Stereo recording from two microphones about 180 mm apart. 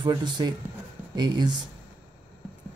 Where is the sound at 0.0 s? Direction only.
25° right (ahead or behind).